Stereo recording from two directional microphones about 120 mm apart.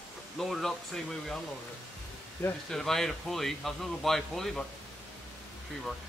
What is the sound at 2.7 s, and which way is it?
Speech, 5° left (ahead or behind).